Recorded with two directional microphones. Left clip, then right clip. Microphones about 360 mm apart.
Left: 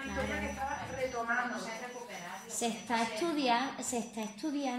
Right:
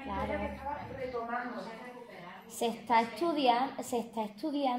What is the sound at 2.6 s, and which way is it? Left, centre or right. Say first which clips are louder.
A woman's voice: right 5 dB; right.